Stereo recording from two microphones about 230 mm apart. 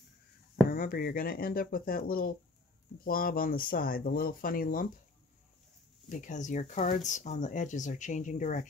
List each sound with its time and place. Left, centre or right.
0.7 s speech: left
6.0 s speech: left